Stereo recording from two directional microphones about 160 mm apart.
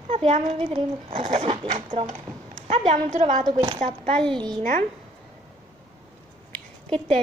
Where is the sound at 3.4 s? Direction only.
25° right (ahead or behind).